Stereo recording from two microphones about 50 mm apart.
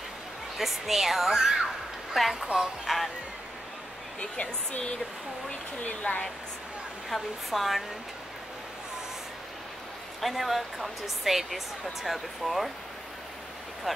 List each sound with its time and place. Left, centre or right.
0.6 s speech: centre
2.4 s speech: centre
4.2 s speech: left
7.1 s speech: centre
10.2 s speech: centre
13.9 s speech: centre